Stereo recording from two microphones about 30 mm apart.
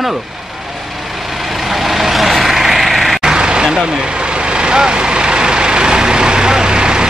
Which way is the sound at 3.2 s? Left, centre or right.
Right.